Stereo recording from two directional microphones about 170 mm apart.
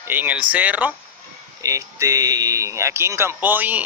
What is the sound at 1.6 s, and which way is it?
Speech, 20° right (ahead or behind).